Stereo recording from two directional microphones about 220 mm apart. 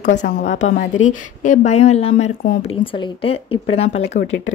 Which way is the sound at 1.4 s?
35° left (ahead or behind).